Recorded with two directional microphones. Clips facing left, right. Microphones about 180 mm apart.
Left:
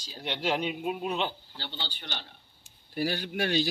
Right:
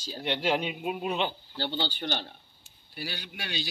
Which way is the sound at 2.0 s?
40° right (ahead or behind).